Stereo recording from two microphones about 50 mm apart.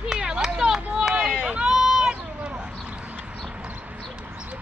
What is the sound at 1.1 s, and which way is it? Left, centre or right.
Run, centre.